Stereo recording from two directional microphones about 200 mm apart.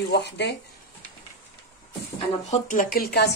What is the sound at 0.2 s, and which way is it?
Speech, 60° left (ahead or behind).